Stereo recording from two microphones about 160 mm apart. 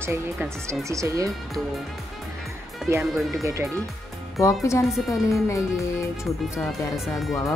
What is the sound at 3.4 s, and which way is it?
Speech, 20° right (ahead or behind).